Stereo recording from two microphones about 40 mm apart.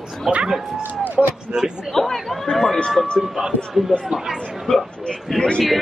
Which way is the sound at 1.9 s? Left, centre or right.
Centre.